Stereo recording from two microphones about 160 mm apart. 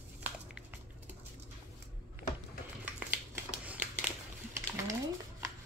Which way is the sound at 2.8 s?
10° right (ahead or behind).